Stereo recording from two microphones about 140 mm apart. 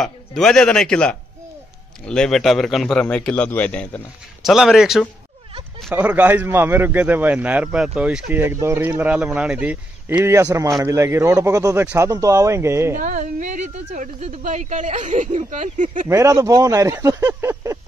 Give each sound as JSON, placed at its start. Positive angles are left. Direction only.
{"t": 0.0, "sound": "a man's voice", "side_deg": 5}
{"t": 4.4, "sound": "a man's voice", "side_deg": 0}
{"t": 10.2, "sound": "speech", "side_deg": -20}
{"t": 11.8, "sound": "a man's voice", "side_deg": -10}
{"t": 12.1, "sound": "speech", "side_deg": -25}
{"t": 12.9, "sound": "a woman's voice", "side_deg": -70}
{"t": 16.1, "sound": "speech", "side_deg": -25}